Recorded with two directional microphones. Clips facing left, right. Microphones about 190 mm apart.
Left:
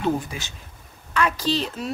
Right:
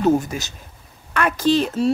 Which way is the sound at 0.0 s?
40° right (ahead or behind).